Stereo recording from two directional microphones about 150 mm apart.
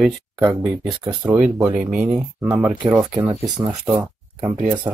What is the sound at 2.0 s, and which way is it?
Speech, 15° right (ahead or behind).